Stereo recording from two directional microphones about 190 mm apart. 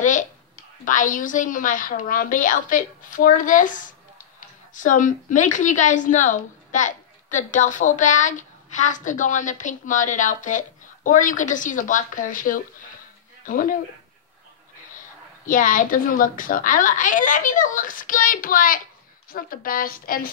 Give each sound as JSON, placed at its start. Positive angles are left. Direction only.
{"t": 0.0, "sound": "a sound", "side_deg": 40}
{"t": 0.8, "sound": "a woman's voice", "side_deg": 45}
{"t": 15.4, "sound": "a woman's voice", "side_deg": 45}